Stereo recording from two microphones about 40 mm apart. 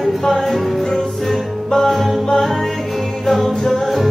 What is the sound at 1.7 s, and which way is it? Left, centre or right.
Music, centre.